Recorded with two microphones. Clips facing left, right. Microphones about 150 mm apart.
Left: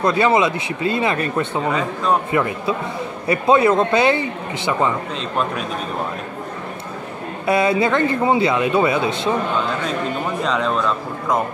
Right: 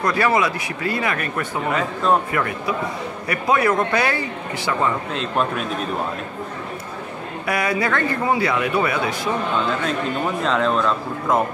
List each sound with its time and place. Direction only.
0.0 s speech: 20° left (ahead or behind)
5.1 s a man's voice: centre (ahead or behind)
7.4 s speech: 25° left (ahead or behind)
10.4 s a man's voice: centre (ahead or behind)